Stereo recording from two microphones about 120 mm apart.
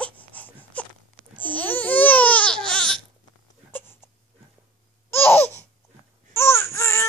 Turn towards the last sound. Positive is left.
turn(degrees=25)  # may be behind; listen again after turning